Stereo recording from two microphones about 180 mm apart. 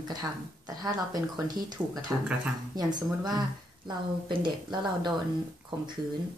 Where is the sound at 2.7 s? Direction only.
20° right (ahead or behind).